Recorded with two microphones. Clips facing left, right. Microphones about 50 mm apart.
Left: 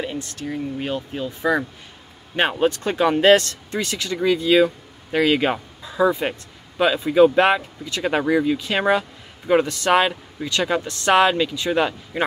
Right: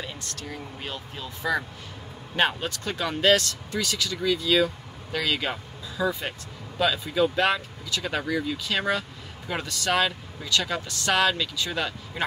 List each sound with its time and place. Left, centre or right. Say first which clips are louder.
0.0 s speech: left 8 dB; left